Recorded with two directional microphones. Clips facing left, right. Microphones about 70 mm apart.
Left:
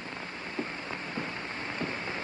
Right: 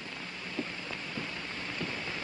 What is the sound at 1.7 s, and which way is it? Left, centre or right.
Rain, left.